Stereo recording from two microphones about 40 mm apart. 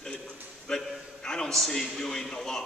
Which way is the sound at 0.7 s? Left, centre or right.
Centre.